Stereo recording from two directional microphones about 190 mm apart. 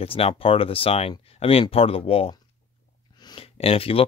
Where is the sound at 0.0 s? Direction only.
30° left (ahead or behind).